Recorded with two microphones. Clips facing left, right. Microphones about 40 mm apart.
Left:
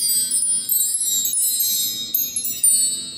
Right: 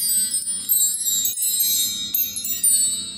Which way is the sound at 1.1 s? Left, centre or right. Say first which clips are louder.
Left 3 dB; right.